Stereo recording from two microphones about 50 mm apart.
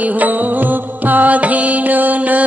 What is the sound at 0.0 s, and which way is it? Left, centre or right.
Music, right.